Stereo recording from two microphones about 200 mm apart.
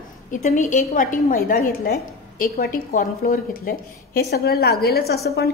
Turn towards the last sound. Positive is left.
turn(degrees=55)  # may be behind; listen again after turning